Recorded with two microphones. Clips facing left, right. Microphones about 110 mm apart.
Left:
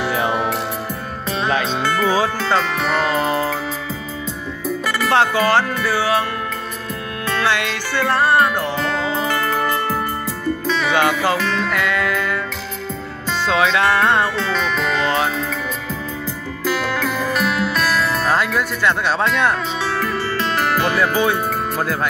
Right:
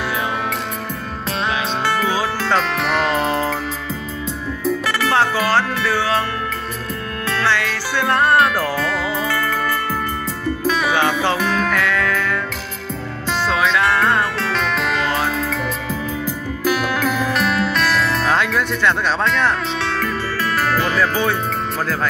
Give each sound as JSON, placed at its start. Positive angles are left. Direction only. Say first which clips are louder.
{"t": 2.4, "sound": "music", "louder": "even", "side_deg": 0}
{"t": 5.1, "sound": "music", "louder": "left 2 dB", "side_deg": 15}
{"t": 7.4, "sound": "music", "louder": "right 1 dB", "side_deg": 15}
{"t": 8.1, "sound": "music", "louder": "right 1 dB", "side_deg": 0}
{"t": 8.7, "sound": "music", "louder": "even", "side_deg": 25}
{"t": 10.7, "sound": "music", "louder": "left 1 dB", "side_deg": -10}
{"t": 13.5, "sound": "music", "louder": "left 2 dB", "side_deg": 20}
{"t": 14.4, "sound": "music", "louder": "even", "side_deg": 0}